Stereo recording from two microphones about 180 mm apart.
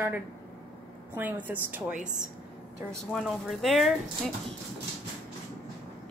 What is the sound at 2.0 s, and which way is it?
Speech, 45° right (ahead or behind).